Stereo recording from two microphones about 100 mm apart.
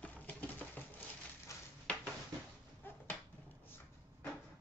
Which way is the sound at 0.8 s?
15° left (ahead or behind).